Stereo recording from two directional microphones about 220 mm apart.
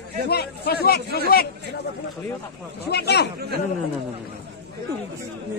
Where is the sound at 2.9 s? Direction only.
50° left (ahead or behind).